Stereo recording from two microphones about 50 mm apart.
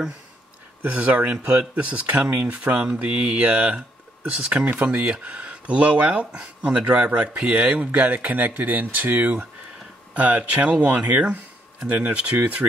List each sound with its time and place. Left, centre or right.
0.8 s speech: right
4.6 s speech: right